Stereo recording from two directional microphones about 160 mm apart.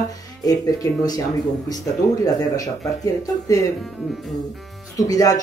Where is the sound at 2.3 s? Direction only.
20° left (ahead or behind).